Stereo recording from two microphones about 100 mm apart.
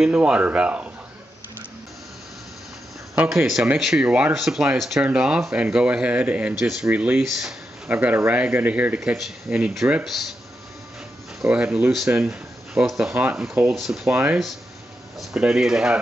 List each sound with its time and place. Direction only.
0.0 s speech: 10° right (ahead or behind)
3.3 s speech: 5° right (ahead or behind)
11.4 s speech: 10° right (ahead or behind)
13.1 s speech: 15° right (ahead or behind)
13.7 s speech: 5° right (ahead or behind)